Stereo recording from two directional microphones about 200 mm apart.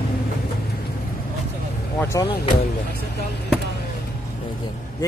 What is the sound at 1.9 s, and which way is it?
Speech, 15° left (ahead or behind).